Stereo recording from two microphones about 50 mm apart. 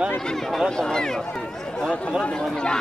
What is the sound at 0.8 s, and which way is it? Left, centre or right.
Speech, centre.